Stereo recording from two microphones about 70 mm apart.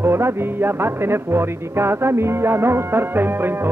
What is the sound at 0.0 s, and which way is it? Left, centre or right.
Music, right.